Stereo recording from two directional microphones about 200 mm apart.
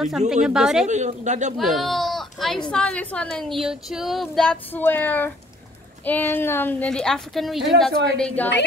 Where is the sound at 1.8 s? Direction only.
Centre (ahead or behind).